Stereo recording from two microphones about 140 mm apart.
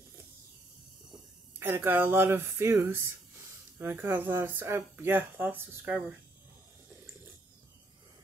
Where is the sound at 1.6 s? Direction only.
15° right (ahead or behind).